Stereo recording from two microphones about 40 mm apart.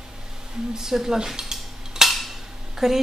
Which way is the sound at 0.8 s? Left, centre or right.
Centre.